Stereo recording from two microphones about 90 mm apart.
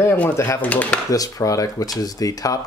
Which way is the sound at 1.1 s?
40° left (ahead or behind).